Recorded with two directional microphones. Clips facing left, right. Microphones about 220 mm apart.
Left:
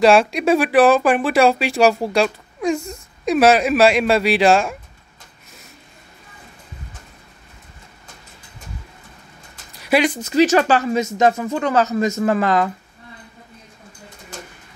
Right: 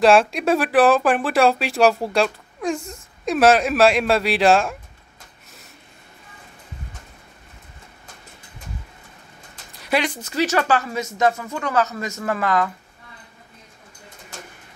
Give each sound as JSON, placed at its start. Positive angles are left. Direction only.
{"t": 0.0, "sound": "speech", "side_deg": 0}
{"t": 9.8, "sound": "speech", "side_deg": 10}